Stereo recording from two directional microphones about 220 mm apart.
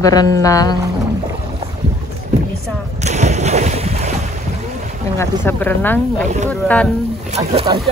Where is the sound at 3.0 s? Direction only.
30° right (ahead or behind).